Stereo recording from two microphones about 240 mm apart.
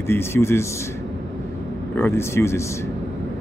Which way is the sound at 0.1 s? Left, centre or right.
Centre.